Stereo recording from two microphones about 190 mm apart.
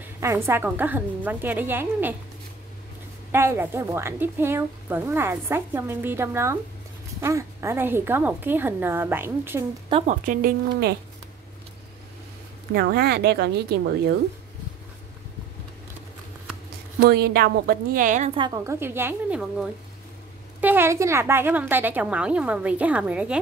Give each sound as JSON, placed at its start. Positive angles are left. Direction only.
{"t": 0.0, "sound": "a woman's voice", "side_deg": -15}
{"t": 3.3, "sound": "a woman's voice", "side_deg": -10}
{"t": 9.8, "sound": "speech", "side_deg": -30}
{"t": 10.2, "sound": "speech", "side_deg": -45}
{"t": 12.7, "sound": "a woman's voice", "side_deg": -55}
{"t": 17.0, "sound": "speech", "side_deg": -55}
{"t": 18.3, "sound": "a woman's voice", "side_deg": -20}